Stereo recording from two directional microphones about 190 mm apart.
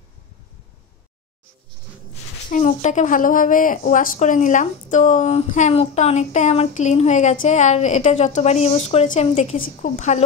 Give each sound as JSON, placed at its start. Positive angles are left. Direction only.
{"t": 2.5, "sound": "a woman's voice", "side_deg": 40}